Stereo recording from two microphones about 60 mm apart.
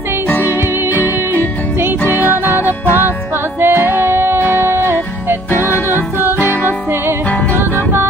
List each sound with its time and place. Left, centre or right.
0.9 s music: right